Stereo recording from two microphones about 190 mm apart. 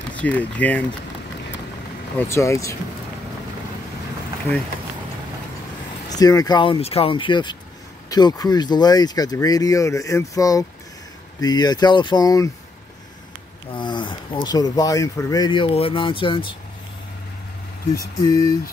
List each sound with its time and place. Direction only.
0.1 s speech: 10° left (ahead or behind)
2.1 s speech: 15° left (ahead or behind)
6.0 s speech: 20° left (ahead or behind)
13.7 s speech: 25° left (ahead or behind)
18.2 s speech: 20° left (ahead or behind)